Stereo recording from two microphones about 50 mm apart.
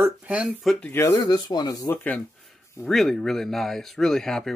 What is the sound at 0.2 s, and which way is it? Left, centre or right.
Speech, right.